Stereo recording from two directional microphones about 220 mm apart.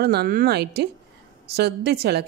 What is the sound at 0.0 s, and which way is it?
A woman's voice, 45° right (ahead or behind).